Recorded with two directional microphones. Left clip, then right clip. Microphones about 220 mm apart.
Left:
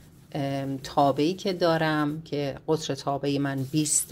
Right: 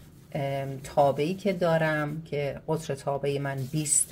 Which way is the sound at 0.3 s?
35° left (ahead or behind).